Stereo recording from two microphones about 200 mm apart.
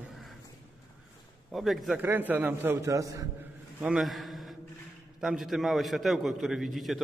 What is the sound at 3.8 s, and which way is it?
A man's voice, centre (ahead or behind).